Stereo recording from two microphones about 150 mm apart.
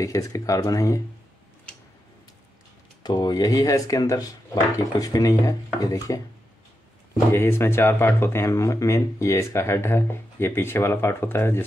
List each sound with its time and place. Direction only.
0.0 s speech: 20° left (ahead or behind)
3.0 s speech: 25° left (ahead or behind)
7.3 s speech: 15° left (ahead or behind)